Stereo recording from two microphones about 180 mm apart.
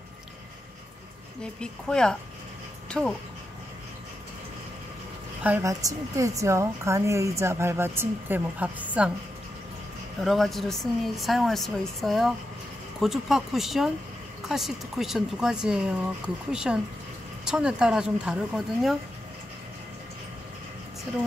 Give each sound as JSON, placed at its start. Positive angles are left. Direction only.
{"t": 1.4, "sound": "speech", "side_deg": 5}
{"t": 5.4, "sound": "a woman's voice", "side_deg": -15}
{"t": 10.2, "sound": "speech", "side_deg": 0}